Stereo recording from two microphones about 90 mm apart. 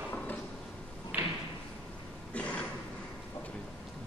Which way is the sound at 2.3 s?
15° left (ahead or behind).